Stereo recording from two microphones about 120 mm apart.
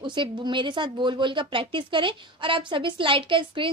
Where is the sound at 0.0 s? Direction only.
40° right (ahead or behind).